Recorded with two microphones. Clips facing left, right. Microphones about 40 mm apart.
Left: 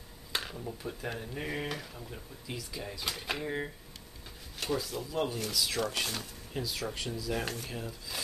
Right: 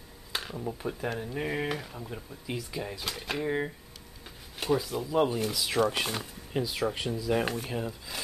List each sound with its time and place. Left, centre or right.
0.3 s a sound: centre
0.6 s speech: centre
3.1 s speech: centre